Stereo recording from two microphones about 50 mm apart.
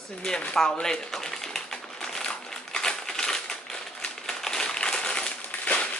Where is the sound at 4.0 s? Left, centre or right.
Centre.